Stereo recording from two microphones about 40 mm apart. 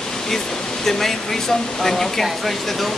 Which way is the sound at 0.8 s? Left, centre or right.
Centre.